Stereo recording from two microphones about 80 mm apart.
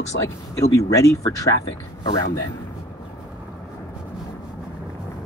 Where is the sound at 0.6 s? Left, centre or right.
Left.